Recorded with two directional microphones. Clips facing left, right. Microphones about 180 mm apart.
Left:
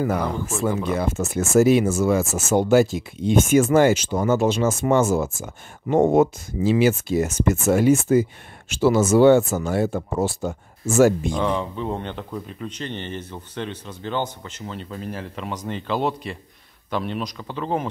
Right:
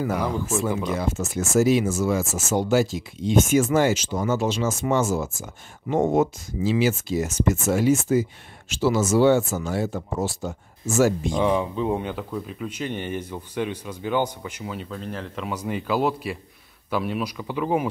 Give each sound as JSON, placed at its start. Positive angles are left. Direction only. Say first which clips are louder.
{"t": 0.9, "sound": "speech", "louder": "left 3 dB", "side_deg": 55}
{"t": 11.3, "sound": "speech", "louder": "right 2 dB", "side_deg": -15}
{"t": 14.9, "sound": "speech", "louder": "left 1 dB", "side_deg": 5}